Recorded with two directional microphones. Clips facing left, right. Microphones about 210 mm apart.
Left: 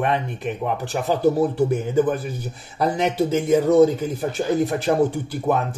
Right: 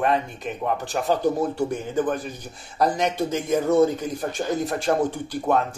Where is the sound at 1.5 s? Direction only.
10° left (ahead or behind).